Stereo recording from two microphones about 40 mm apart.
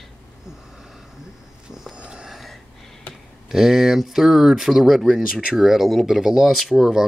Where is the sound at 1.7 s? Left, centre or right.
Centre.